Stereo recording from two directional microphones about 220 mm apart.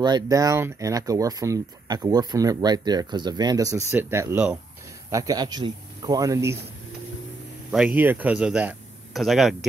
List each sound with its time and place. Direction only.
0.0 s speech: 15° right (ahead or behind)
7.7 s speech: 5° right (ahead or behind)